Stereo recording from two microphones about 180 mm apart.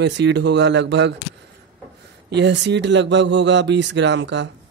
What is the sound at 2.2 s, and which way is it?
Speech, 75° right (ahead or behind).